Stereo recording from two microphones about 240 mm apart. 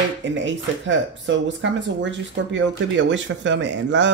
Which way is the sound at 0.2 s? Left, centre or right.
Right.